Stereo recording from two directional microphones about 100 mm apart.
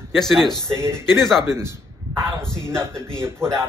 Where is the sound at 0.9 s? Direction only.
5° left (ahead or behind).